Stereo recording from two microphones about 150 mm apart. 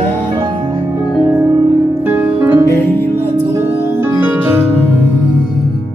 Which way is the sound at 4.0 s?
10° right (ahead or behind).